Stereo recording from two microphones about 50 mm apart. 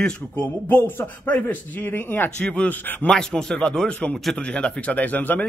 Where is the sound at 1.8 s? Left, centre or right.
Left.